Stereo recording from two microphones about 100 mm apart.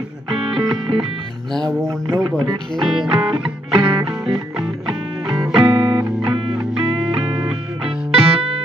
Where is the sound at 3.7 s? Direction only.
55° right (ahead or behind).